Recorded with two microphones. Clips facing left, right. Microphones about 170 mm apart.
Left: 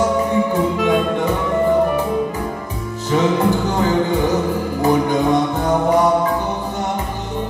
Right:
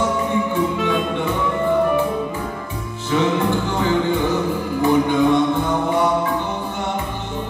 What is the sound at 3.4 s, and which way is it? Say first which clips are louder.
Music: left 3 dB; 40° left (ahead or behind).